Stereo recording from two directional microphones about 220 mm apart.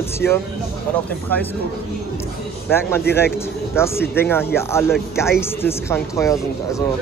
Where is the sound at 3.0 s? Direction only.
45° left (ahead or behind).